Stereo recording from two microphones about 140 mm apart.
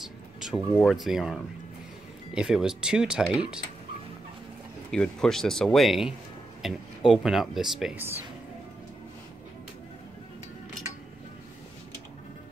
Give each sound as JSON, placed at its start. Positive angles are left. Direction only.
{"t": 0.0, "sound": "music", "side_deg": -5}
{"t": 0.8, "sound": "speech", "side_deg": 0}
{"t": 4.9, "sound": "speech", "side_deg": 5}
{"t": 7.9, "sound": "speech", "side_deg": -15}